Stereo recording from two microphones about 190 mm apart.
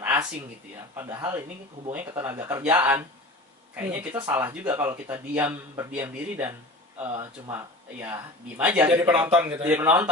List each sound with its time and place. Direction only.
0.0 s a sound: 10° right (ahead or behind)
0.9 s speech: 15° right (ahead or behind)
8.9 s speech: 25° right (ahead or behind)
9.2 s speech: 10° right (ahead or behind)